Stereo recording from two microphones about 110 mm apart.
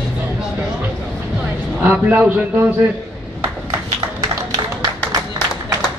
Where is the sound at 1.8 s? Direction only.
15° right (ahead or behind).